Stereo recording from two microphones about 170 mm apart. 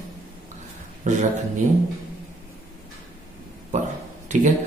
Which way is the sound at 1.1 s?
45° right (ahead or behind).